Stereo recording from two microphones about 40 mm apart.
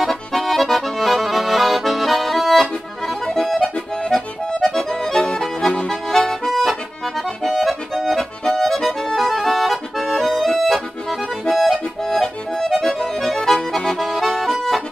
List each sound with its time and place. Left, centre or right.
0.0 s accordion: centre
3.7 s accordion: left; by 11.8 s centre
12.0 s accordion: centre